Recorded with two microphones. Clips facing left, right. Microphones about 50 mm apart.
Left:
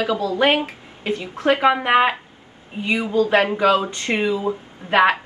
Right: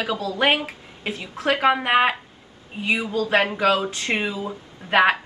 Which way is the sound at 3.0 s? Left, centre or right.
Left.